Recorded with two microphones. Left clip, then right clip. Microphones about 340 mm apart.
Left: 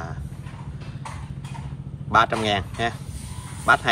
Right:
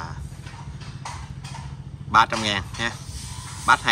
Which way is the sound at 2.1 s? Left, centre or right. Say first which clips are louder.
Even; centre.